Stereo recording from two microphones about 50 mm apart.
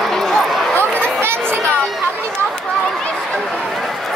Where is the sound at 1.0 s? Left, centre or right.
Right.